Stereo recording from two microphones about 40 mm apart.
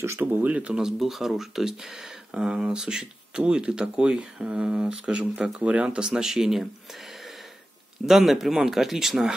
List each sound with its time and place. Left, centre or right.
0.0 s speech: right
0.3 s speech: right
0.7 s speech: centre
2.3 s speech: right
5.9 s speech: centre